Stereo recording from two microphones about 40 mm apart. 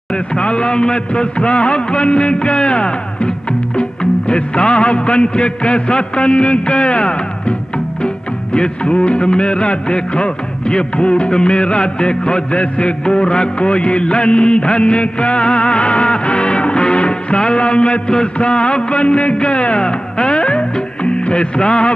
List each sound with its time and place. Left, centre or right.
0.1 s music: left
8.5 s music: left